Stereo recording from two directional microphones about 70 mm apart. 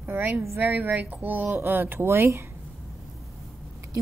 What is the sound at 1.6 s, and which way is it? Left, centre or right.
Speech, right.